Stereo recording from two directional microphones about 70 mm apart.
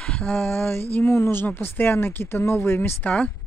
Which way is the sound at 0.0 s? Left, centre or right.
Centre.